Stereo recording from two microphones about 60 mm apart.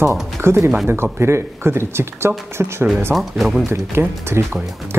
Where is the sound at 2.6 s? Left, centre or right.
Right.